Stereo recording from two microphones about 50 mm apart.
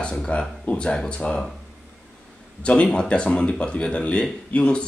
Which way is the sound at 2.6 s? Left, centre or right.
Left.